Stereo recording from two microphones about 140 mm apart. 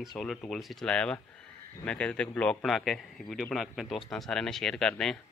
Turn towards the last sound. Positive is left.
turn(degrees=5)  # may be behind; listen again after turning